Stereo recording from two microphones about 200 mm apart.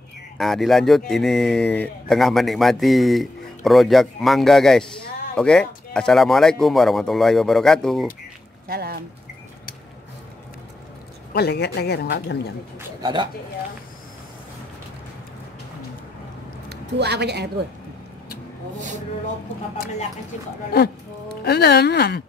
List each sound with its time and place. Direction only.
0.4 s speech: centre (ahead or behind)
8.6 s a sound: 50° right (ahead or behind)
11.3 s speech: 55° left (ahead or behind)
13.0 s speech: 25° right (ahead or behind)
16.6 s a woman's voice: 55° right (ahead or behind)
21.4 s speech: 55° left (ahead or behind)